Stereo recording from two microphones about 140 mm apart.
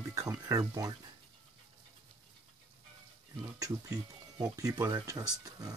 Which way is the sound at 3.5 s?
25° right (ahead or behind).